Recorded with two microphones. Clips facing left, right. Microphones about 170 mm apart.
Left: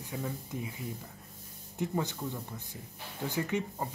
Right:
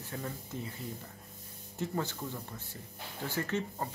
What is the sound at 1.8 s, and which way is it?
Speech, 15° left (ahead or behind).